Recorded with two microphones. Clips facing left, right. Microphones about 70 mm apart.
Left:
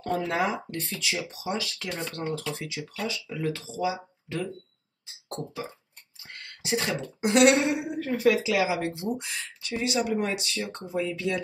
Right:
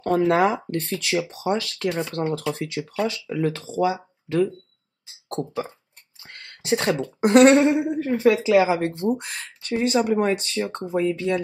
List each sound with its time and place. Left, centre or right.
0.0 s speech: right
1.9 s speech: centre
2.5 s speech: right
6.6 s speech: right
8.5 s speech: right